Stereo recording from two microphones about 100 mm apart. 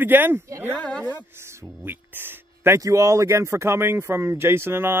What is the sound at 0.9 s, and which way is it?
Speech, 15° left (ahead or behind).